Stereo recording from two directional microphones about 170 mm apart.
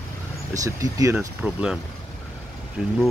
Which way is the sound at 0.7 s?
20° right (ahead or behind).